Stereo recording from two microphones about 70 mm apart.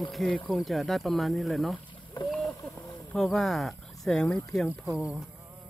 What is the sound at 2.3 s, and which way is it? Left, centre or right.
Boat, centre.